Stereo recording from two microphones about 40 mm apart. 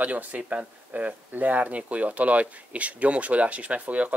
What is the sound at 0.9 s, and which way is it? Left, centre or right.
Speech, right.